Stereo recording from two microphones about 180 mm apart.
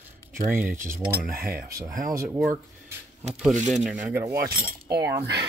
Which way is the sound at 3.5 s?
45° right (ahead or behind).